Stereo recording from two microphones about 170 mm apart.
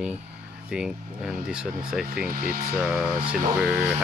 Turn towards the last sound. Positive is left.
turn(degrees=-5)  # may be behind; listen again after turning